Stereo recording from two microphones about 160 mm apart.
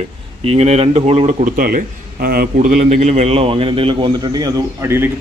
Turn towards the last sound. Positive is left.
turn(degrees=-15)  # may be behind; listen again after turning